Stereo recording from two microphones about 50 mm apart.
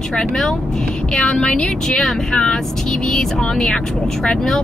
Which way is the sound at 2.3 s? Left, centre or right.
Centre.